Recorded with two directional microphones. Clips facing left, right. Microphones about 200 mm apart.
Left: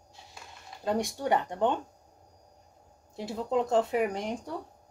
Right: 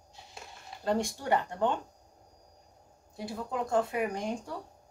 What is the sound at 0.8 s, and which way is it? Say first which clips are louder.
Speech: left 1 dB; 15° left (ahead or behind).